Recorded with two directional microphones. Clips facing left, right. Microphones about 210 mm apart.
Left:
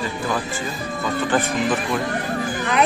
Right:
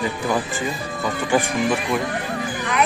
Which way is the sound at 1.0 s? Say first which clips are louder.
Right 1 dB; 15° right (ahead or behind).